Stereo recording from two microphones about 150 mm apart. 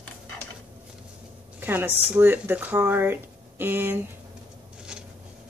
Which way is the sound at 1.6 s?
15° right (ahead or behind).